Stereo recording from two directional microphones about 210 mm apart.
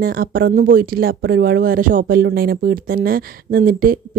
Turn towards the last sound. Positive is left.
turn(degrees=-45)  # may be behind; listen again after turning